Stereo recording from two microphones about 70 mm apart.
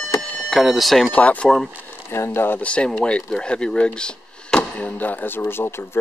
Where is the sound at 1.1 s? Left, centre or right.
Centre.